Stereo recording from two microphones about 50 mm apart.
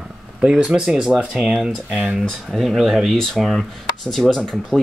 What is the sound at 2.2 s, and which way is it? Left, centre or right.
Speech, centre.